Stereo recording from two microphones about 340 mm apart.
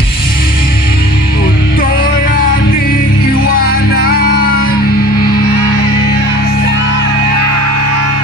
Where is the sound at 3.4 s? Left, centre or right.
Left.